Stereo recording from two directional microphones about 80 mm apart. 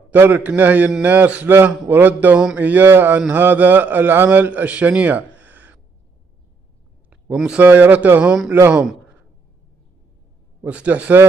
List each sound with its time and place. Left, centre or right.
0.1 s a man's voice: right
5.4 s a sound: centre
7.3 s a man's voice: centre
10.6 s a man's voice: centre